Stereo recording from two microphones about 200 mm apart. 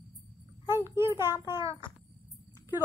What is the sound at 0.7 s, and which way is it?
Child singing, 10° right (ahead or behind).